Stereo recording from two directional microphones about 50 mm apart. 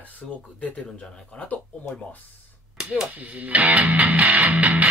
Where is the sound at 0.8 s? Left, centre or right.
Left.